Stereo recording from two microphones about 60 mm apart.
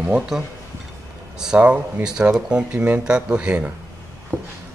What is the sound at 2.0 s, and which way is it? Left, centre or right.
Speech, centre.